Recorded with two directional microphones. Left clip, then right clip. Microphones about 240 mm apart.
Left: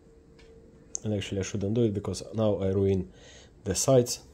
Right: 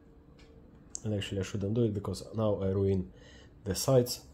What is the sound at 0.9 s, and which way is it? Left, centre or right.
Speech, left.